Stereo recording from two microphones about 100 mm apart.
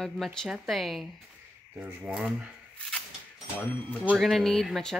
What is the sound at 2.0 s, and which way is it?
Speech, 10° right (ahead or behind).